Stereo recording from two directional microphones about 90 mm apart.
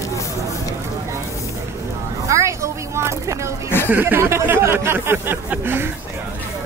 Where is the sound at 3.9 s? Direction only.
20° right (ahead or behind).